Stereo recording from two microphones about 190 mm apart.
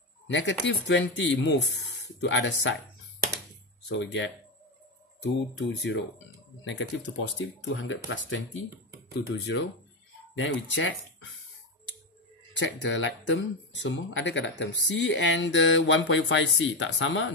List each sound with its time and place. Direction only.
0.3 s speech: 70° left (ahead or behind)
3.9 s speech: 70° left (ahead or behind)
7.3 s speech: 80° left
9.3 s speech: 65° left (ahead or behind)
10.3 s speech: 80° left
12.5 s speech: 75° left (ahead or behind)